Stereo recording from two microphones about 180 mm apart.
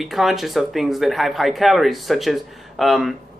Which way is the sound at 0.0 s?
Centre (ahead or behind).